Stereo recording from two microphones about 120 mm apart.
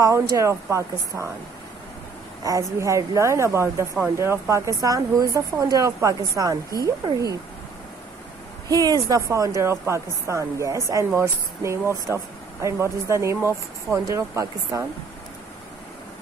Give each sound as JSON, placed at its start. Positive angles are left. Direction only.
{"t": 0.0, "sound": "speech", "side_deg": -25}
{"t": 2.4, "sound": "speech", "side_deg": -25}
{"t": 8.6, "sound": "a woman's voice", "side_deg": -30}